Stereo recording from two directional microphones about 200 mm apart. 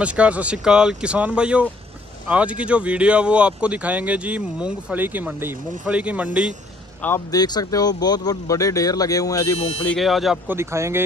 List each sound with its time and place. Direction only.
0.0 s speech: 5° right (ahead or behind)
7.0 s speech: 10° left (ahead or behind)
9.8 s speech: centre (ahead or behind)
10.6 s speech: 15° right (ahead or behind)